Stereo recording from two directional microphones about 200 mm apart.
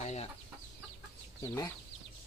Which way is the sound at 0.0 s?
35° left (ahead or behind).